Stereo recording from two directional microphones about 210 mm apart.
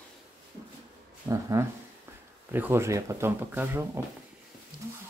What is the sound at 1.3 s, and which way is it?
Speech, 15° right (ahead or behind).